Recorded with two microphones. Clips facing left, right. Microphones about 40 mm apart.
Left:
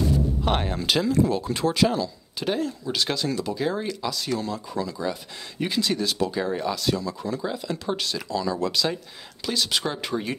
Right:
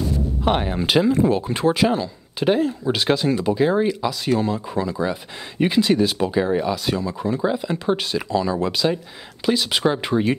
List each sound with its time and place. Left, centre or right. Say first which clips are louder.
0.5 s speech: right 6 dB; centre
0.7 s speech: right 4 dB; right